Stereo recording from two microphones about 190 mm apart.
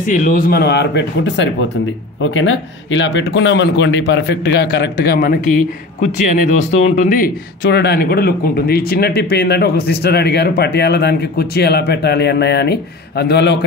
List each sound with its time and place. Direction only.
0.0 s speech: 45° left (ahead or behind); by 1.5 s 70° left (ahead or behind)
2.2 s speech: 90° left; by 5.5 s 50° left (ahead or behind)
6.5 s speech: 40° left (ahead or behind); by 13.7 s 65° left (ahead or behind)